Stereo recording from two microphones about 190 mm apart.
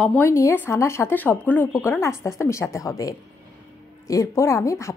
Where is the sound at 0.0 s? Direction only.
10° left (ahead or behind).